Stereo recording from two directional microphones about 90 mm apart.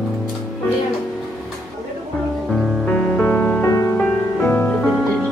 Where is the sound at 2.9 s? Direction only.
20° left (ahead or behind).